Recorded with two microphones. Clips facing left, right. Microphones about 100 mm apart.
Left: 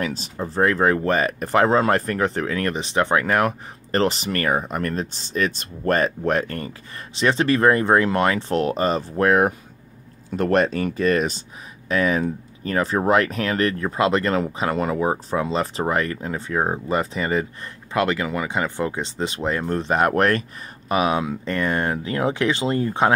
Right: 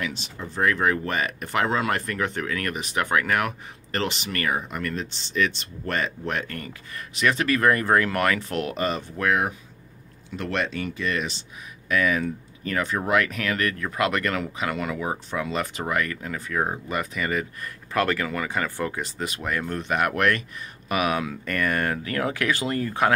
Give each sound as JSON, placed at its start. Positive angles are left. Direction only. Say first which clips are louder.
{"t": 0.0, "sound": "speech", "louder": "left 5 dB", "side_deg": 40}
{"t": 11.9, "sound": "speech", "louder": "left 3 dB", "side_deg": 30}
{"t": 17.9, "sound": "speech", "louder": "left 3 dB", "side_deg": 20}